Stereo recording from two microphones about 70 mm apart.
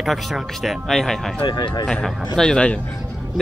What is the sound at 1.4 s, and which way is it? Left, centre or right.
Speech, left.